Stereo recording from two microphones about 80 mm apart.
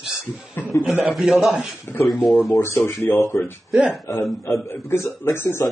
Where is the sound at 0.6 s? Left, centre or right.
Left.